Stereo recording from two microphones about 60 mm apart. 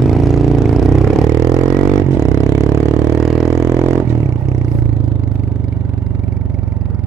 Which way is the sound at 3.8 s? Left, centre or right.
Right.